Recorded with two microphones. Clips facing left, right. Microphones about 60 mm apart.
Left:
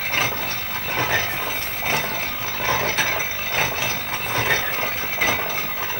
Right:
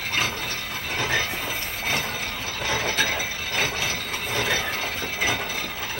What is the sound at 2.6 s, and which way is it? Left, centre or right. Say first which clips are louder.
Mechanisms: left 3 dB; left.